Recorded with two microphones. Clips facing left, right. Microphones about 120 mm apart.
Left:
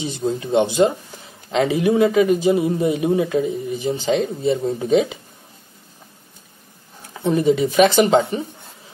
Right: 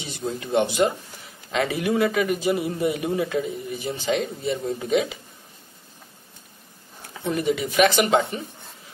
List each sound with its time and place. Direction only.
0.0 s speech: 25° left (ahead or behind)
7.2 s speech: 30° left (ahead or behind)